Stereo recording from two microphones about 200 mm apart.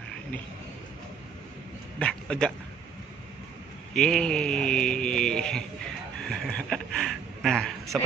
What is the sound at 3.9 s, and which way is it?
Speech, 5° left (ahead or behind).